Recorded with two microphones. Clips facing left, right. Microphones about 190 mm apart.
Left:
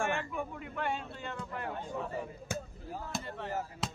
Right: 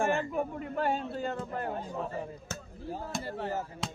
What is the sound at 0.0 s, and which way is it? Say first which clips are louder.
Speech: right 5 dB; 35° right (ahead or behind).